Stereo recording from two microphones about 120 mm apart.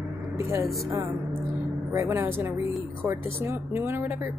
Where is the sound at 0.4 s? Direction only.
20° right (ahead or behind).